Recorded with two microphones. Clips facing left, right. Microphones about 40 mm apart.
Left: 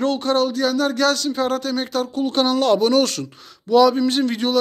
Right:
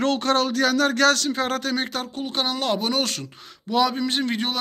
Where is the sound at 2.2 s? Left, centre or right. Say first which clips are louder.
Left 7 dB; centre.